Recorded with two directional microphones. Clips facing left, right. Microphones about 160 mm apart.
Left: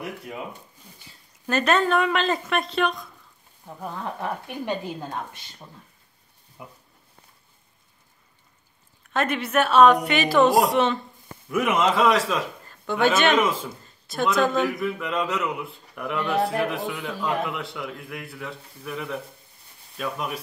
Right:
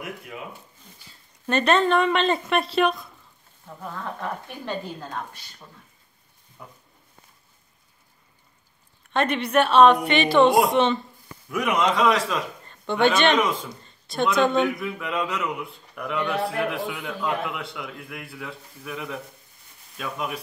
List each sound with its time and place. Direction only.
1.5 s a man's voice: 5° left (ahead or behind)
3.6 s speech: 15° left (ahead or behind)
6.6 s speech: 15° left (ahead or behind)
9.1 s a man's voice: 5° left (ahead or behind)